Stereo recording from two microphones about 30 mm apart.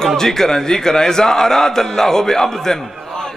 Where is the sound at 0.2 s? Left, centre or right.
Centre.